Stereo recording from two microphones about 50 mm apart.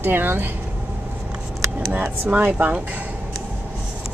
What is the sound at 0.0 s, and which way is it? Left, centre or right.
Speech, right.